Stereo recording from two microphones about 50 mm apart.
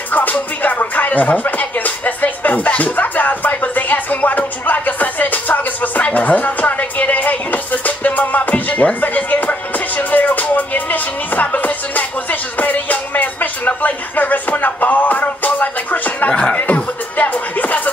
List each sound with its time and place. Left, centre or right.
0.1 s speech: left
16.3 s music: left